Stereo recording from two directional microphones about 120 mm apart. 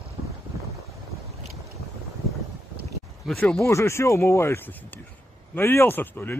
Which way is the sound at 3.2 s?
Centre (ahead or behind).